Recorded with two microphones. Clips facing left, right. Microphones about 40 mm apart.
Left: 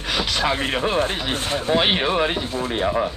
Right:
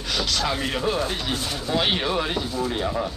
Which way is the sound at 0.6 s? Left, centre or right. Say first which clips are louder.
Left 3 dB; left.